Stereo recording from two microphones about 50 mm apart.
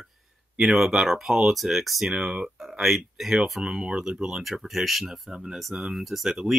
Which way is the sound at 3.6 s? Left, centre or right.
Centre.